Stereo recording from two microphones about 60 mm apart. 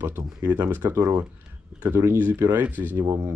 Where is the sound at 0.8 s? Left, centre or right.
Right.